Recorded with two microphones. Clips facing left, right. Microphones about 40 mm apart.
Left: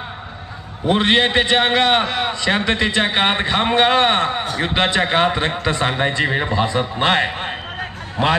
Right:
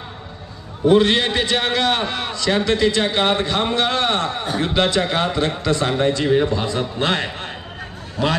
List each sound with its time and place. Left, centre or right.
0.8 s a man's voice: left